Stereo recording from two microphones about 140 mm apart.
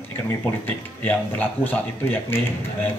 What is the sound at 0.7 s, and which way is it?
A man's voice, 10° left (ahead or behind).